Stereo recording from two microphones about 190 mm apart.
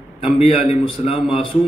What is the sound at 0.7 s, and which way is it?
Speech, 30° left (ahead or behind).